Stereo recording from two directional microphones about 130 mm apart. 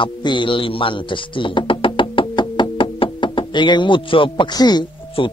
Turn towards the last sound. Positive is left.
turn(degrees=35)  # may be behind; listen again after turning